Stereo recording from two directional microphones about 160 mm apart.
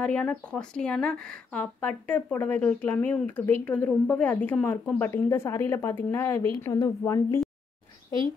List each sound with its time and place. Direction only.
0.0 s a woman's voice: 10° left (ahead or behind)